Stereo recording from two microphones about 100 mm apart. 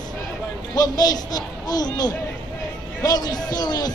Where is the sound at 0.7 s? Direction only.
40° left (ahead or behind).